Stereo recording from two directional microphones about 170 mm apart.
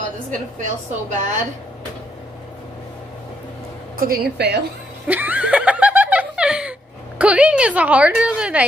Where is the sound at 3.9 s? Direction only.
60° right (ahead or behind).